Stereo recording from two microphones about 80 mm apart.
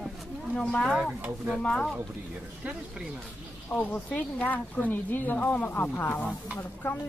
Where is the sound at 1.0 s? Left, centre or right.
Centre.